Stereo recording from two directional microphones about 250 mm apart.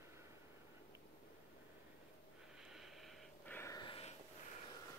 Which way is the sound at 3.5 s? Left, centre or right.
Centre.